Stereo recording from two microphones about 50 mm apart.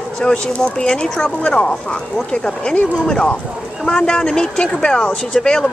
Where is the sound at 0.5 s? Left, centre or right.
Left.